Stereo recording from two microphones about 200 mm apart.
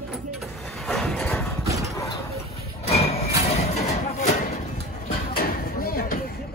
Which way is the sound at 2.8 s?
30° left (ahead or behind).